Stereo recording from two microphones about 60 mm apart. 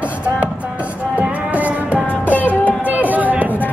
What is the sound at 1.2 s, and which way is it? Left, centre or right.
Music, right.